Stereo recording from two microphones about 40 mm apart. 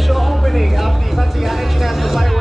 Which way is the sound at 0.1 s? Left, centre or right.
Centre.